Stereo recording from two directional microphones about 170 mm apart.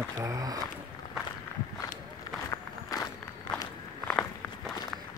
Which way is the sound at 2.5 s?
20° left (ahead or behind).